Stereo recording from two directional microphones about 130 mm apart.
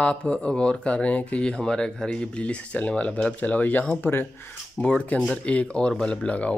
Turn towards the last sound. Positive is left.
turn(degrees=10)  # may be behind; listen again after turning